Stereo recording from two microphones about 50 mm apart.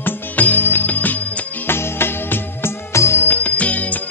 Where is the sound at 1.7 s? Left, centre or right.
Left.